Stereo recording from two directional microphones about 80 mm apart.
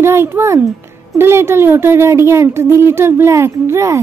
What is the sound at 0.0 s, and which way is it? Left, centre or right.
A woman's voice, right.